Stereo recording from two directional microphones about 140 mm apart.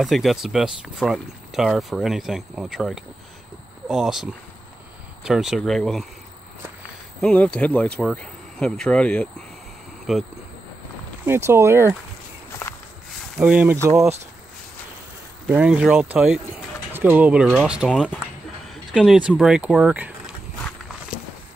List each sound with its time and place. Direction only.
0.0 s speech: centre (ahead or behind)
7.2 s speech: 5° left (ahead or behind)
11.2 s speech: 15° right (ahead or behind)
13.4 s speech: 10° right (ahead or behind)
13.8 s speech: 20° right (ahead or behind)
15.4 s speech: 10° right (ahead or behind)